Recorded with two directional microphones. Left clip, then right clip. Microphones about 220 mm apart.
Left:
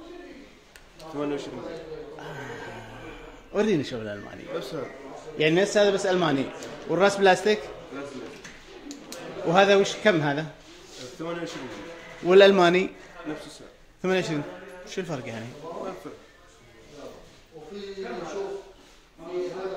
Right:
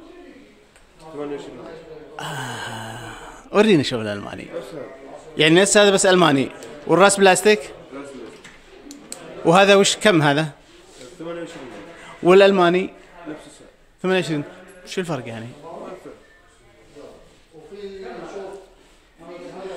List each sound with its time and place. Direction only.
3.5 s a man's voice: 35° right (ahead or behind)
5.4 s a man's voice: 40° right (ahead or behind)
9.5 s a man's voice: 40° right (ahead or behind)
12.3 s a man's voice: 25° right (ahead or behind)
14.0 s a man's voice: 25° right (ahead or behind)